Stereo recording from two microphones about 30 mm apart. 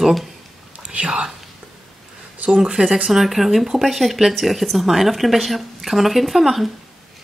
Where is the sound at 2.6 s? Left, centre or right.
Right.